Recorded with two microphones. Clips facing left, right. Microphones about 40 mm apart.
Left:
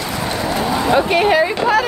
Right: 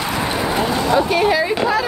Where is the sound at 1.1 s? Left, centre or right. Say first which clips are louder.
Left 2 dB; left.